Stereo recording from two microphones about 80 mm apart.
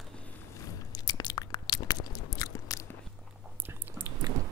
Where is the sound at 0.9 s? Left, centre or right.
Left.